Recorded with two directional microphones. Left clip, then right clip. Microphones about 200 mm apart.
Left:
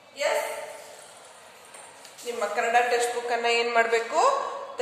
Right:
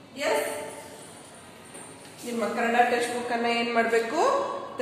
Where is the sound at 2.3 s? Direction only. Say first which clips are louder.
Even; 55° left (ahead or behind).